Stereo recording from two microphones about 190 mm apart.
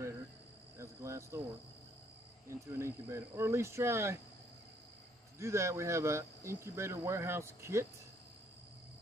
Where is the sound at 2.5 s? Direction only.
15° right (ahead or behind).